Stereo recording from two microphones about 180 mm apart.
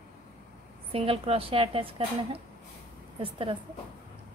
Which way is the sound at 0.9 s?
30° right (ahead or behind).